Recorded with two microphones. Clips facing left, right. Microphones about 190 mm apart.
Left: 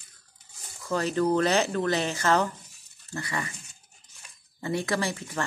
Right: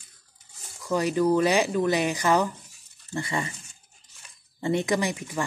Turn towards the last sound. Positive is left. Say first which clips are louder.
# right 3 dB
turn(degrees=-15)  # may be behind; listen again after turning